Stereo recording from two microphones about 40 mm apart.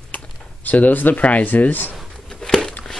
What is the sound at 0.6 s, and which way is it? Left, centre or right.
Speech, left.